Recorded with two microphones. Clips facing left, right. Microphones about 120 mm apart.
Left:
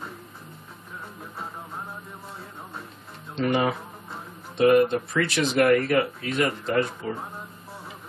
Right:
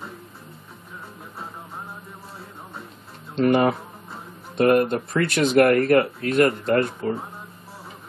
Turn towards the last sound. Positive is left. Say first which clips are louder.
# right 4 dB
turn(degrees=-55)  # may be behind; listen again after turning